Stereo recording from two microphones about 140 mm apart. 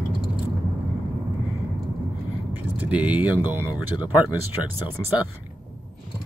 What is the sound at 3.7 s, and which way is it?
Speech, 30° left (ahead or behind).